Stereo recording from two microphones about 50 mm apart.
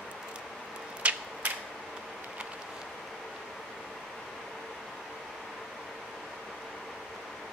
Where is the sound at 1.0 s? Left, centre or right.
Right.